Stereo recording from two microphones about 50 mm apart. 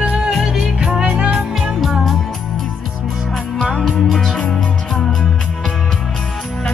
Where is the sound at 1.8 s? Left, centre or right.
Centre.